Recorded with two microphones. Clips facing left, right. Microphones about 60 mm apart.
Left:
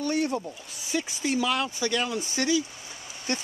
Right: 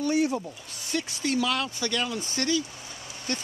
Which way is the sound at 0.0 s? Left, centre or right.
Centre.